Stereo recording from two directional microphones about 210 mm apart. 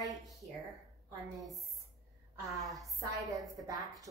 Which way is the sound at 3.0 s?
15° right (ahead or behind).